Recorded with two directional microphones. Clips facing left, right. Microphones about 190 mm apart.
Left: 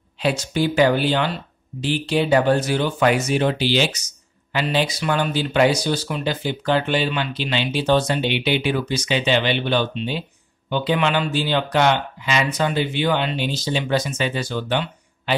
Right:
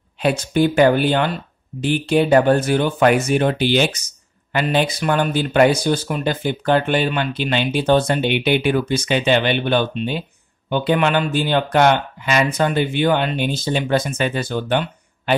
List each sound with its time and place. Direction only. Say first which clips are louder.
0.2 s speech: right 4 dB; 55° right (ahead or behind)